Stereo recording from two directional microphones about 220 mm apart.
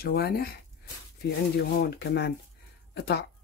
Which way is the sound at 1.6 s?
45° left (ahead or behind).